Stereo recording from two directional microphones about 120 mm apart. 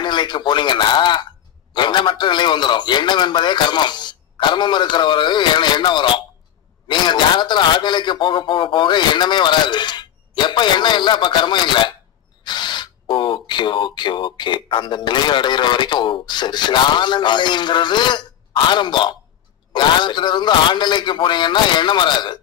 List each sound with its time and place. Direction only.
0.0 s speech: 40° left (ahead or behind)